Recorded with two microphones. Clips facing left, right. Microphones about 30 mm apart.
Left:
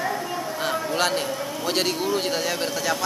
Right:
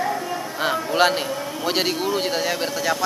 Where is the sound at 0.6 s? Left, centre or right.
Centre.